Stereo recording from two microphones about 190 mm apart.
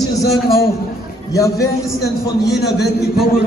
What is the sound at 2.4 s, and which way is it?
Speech, 60° left (ahead or behind).